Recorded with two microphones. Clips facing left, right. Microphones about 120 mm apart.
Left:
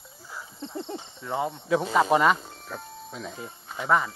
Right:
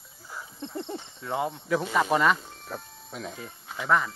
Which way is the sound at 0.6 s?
20° left (ahead or behind).